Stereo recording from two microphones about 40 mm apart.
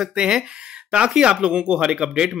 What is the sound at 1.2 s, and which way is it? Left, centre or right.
Speech, right.